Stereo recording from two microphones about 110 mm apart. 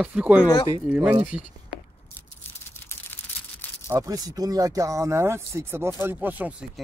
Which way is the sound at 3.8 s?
30° right (ahead or behind).